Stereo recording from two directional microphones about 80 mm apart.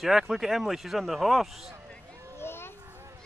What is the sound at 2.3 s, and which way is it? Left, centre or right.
Children playing, left.